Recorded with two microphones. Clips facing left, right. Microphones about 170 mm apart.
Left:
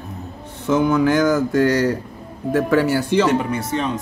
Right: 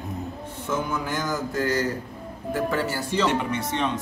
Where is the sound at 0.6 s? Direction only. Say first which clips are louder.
Left 12 dB; 70° left (ahead or behind).